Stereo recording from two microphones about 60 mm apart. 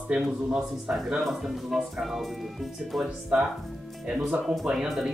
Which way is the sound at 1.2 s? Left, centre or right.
Centre.